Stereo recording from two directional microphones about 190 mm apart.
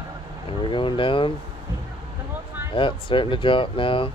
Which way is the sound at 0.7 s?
25° left (ahead or behind).